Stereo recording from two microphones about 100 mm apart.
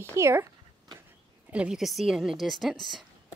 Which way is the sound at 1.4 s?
10° right (ahead or behind).